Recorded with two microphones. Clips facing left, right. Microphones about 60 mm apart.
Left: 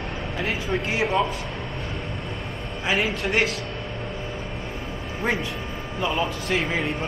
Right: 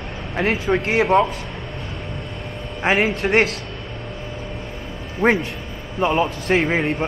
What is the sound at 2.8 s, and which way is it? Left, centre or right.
Speech, right.